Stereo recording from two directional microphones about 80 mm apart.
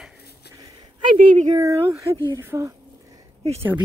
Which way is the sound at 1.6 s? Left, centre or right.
Right.